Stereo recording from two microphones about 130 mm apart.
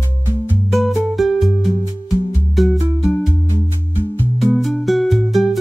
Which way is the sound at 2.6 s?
Centre (ahead or behind).